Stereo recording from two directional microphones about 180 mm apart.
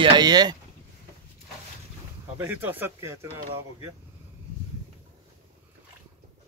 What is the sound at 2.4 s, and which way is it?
Speech, 10° right (ahead or behind).